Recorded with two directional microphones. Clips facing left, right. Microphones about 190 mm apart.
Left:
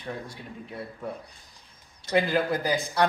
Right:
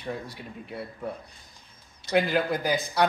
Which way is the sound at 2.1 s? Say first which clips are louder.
Even; 5° right (ahead or behind).